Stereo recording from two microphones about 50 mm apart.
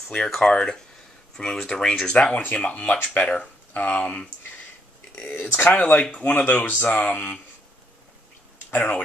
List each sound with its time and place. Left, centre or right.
0.4 s speech: centre
2.3 s speech: left
5.1 s speech: left
5.7 s speech: left
8.6 s speech: left